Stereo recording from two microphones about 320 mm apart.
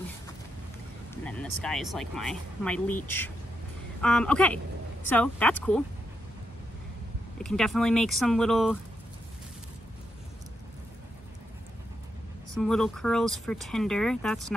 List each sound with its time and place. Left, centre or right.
1.2 s speech: centre
4.0 s speech: centre
7.3 s speech: centre
12.5 s speech: centre